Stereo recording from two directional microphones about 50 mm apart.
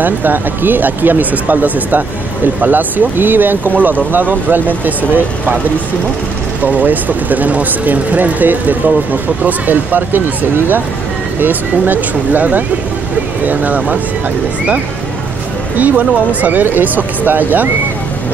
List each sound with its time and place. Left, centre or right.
0.0 s speech: right
6.6 s speech: right
11.3 s speech: right
15.8 s speech: right